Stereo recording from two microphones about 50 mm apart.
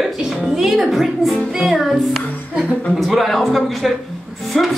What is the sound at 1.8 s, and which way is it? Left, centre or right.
Speech, centre.